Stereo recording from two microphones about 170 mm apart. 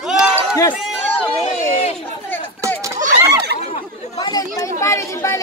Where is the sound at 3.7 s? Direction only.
25° left (ahead or behind).